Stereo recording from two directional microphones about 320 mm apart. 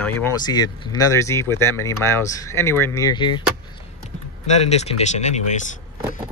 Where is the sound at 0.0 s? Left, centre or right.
Centre.